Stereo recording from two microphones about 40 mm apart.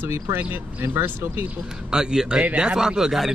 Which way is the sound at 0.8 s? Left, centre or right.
Right.